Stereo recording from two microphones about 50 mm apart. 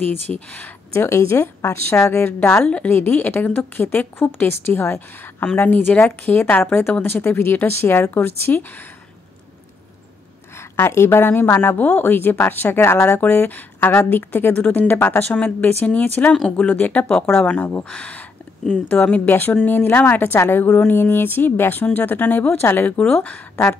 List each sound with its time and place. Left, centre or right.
0.0 s speech: left
0.9 s a woman's voice: left
2.6 s speech: left
2.9 s a woman's voice: left
6.6 s a woman's voice: left
10.6 s a woman's voice: left
13.5 s a woman's voice: left
15.9 s speech: left
16.5 s a woman's voice: left
17.8 s speech: left
18.7 s a woman's voice: left
22.5 s a woman's voice: left